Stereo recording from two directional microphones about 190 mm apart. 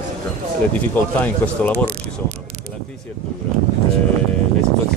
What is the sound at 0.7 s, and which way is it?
Speech, 10° left (ahead or behind).